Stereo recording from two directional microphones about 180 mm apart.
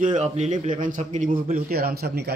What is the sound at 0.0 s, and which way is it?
A man's voice, 40° right (ahead or behind).